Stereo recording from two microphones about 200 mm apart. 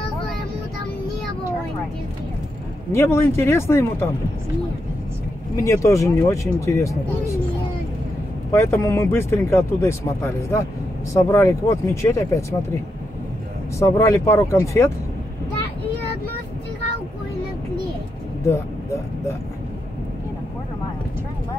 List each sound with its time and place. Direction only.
2.9 s speech: 15° left (ahead or behind)
5.6 s speech: 15° left (ahead or behind)
8.5 s speech: 15° left (ahead or behind)
13.7 s speech: 15° left (ahead or behind)